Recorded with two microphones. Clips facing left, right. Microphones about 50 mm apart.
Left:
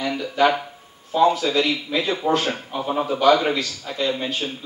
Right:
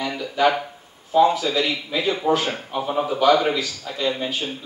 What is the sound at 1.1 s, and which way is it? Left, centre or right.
A man's voice, centre.